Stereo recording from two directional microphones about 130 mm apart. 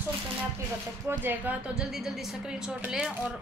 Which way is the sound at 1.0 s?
15° right (ahead or behind).